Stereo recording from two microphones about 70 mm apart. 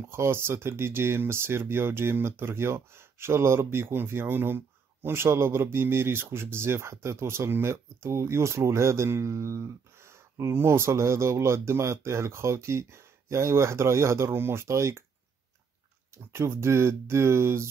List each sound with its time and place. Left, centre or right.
0.1 s speech: right
16.3 s speech: right